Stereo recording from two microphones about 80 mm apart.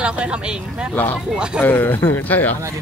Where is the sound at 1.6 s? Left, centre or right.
Left.